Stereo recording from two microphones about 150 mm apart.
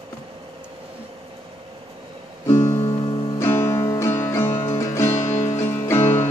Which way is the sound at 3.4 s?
15° left (ahead or behind).